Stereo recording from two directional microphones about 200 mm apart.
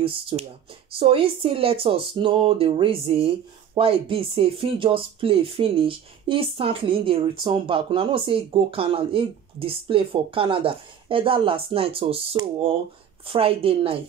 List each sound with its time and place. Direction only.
0.0 s speech: 30° right (ahead or behind)